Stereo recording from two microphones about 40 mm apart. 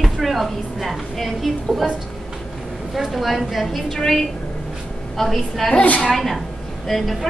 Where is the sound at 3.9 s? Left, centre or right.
Centre.